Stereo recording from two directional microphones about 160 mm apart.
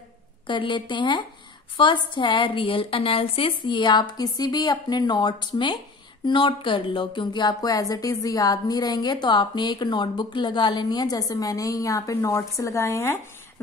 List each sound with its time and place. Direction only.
0.5 s speech: 30° left (ahead or behind)